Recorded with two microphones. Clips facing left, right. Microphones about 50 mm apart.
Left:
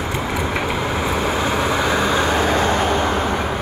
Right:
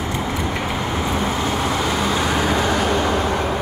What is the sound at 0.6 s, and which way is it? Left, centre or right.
Vehicle, left.